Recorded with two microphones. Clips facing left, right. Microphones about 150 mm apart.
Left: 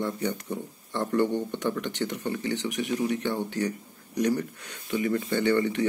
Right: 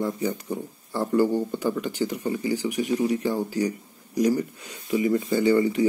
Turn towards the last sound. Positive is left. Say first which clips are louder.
# right 4 dB
turn(degrees=-10)  # may be behind; listen again after turning